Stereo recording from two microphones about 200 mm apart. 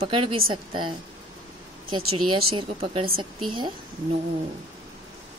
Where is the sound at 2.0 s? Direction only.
90° right.